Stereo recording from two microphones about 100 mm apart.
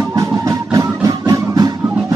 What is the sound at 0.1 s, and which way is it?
Music, 35° right (ahead or behind).